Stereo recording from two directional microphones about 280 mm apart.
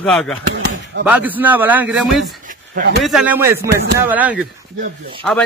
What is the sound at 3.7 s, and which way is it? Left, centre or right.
Speech, right.